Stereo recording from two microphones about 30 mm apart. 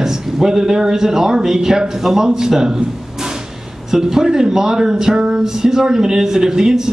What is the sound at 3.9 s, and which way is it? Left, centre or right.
A man's voice, centre.